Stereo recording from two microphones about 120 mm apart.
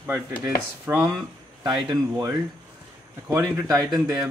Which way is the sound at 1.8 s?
35° right (ahead or behind).